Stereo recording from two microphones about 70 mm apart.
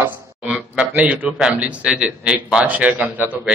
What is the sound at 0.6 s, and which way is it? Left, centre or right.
A man's voice, right.